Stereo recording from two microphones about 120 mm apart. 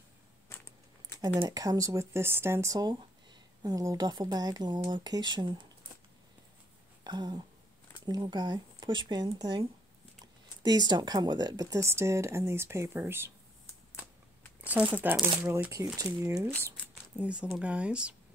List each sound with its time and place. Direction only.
1.5 s speech: 30° right (ahead or behind)
7.1 s speech: 35° right (ahead or behind); by 13.3 s 20° right (ahead or behind)
14.6 s speech: 10° right (ahead or behind)
17.2 s speech: 10° right (ahead or behind)